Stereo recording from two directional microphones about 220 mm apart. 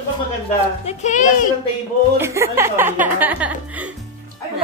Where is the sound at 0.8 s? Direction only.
35° left (ahead or behind).